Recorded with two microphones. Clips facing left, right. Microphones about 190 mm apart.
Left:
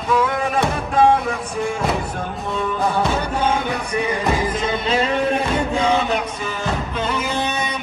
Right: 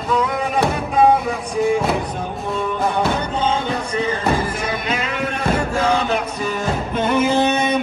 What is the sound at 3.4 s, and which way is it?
Music, 10° left (ahead or behind).